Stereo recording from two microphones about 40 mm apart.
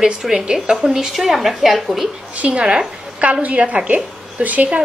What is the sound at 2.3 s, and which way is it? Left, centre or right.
A woman's voice, right.